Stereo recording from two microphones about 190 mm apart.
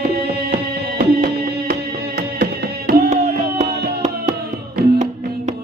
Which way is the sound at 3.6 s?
55° right (ahead or behind).